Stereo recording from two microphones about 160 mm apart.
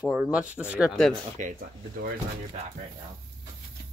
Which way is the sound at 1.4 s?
55° right (ahead or behind).